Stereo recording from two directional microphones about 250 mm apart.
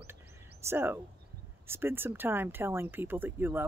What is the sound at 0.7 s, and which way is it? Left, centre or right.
Speech, centre.